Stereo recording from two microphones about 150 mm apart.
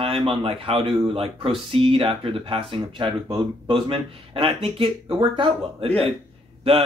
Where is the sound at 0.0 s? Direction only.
35° right (ahead or behind).